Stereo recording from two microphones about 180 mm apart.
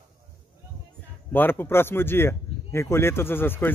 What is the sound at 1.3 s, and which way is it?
Speech, 10° left (ahead or behind).